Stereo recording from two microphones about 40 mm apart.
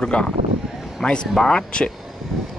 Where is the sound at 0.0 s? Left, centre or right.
Left.